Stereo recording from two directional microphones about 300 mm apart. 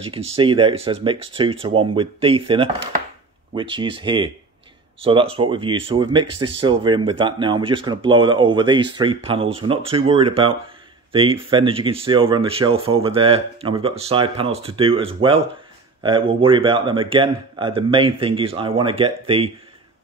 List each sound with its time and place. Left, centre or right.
0.0 s speech: centre